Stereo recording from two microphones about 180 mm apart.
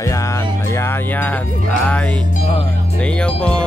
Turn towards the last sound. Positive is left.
turn(degrees=5)  # may be behind; listen again after turning